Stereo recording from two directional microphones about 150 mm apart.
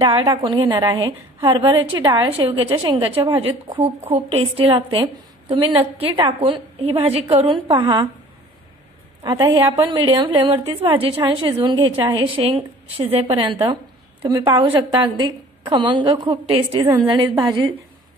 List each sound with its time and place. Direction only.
0.0 s a woman's voice: 35° right (ahead or behind)
9.2 s a woman's voice: 30° right (ahead or behind)